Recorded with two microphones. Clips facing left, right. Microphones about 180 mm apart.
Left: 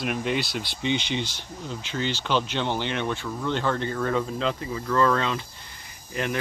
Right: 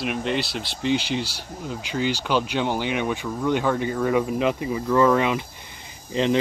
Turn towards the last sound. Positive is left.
turn(degrees=-20)  # may be behind; listen again after turning